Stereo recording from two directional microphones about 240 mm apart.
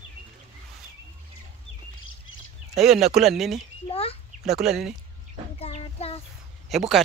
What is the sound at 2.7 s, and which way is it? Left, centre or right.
Speech, centre.